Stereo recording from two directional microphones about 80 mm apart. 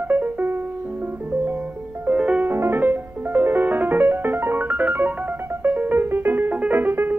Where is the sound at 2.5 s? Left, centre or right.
Right.